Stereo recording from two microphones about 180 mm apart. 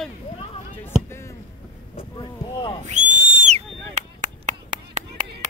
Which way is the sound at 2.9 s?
40° right (ahead or behind).